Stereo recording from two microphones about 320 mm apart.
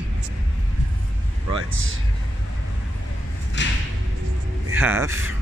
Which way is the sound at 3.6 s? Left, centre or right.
Left.